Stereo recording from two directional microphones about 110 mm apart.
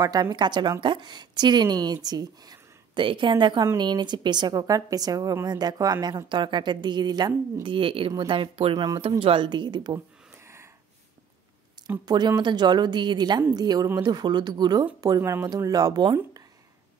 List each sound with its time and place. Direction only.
0.0 s a woman's voice: 35° right (ahead or behind)
7.6 s speech: 50° right (ahead or behind)
8.7 s a woman's voice: 35° right (ahead or behind)
9.2 s speech: 50° right (ahead or behind)
12.1 s a woman's voice: 40° right (ahead or behind)